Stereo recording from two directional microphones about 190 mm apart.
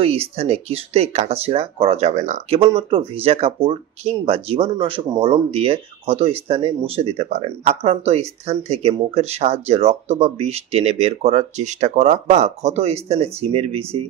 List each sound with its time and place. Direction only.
0.0 s speech: 30° right (ahead or behind)